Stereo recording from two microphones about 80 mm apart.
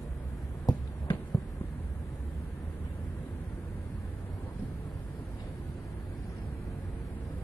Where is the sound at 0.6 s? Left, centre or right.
Left.